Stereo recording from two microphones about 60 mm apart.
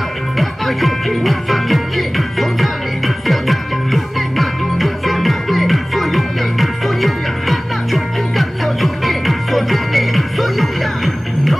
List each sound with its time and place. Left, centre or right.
0.4 s music: centre